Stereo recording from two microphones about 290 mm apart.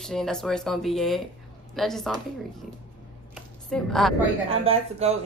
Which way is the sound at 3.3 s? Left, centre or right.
Centre.